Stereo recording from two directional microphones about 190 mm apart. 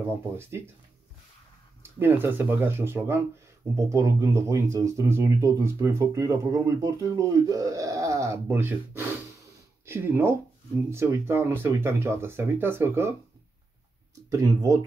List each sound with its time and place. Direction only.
0.4 s speech: 15° right (ahead or behind)
1.8 s speech: 10° right (ahead or behind)
14.3 s speech: 20° right (ahead or behind)